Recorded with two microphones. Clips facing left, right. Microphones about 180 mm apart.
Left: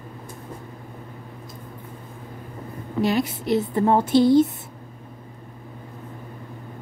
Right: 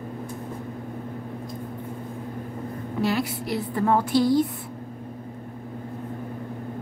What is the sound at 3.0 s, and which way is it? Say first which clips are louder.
A woman's voice: left 3 dB; 20° left (ahead or behind).